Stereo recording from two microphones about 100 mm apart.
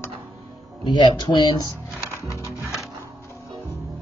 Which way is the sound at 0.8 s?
50° left (ahead or behind).